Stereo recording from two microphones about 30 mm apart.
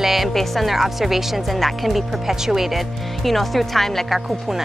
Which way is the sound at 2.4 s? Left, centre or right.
Centre.